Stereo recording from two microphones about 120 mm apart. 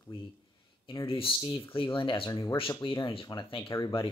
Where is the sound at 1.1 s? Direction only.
45° left (ahead or behind).